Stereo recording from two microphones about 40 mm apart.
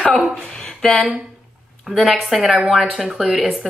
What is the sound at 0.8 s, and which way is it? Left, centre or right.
Speech, centre.